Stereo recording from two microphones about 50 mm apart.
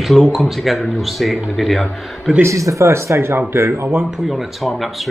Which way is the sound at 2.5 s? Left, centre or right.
Right.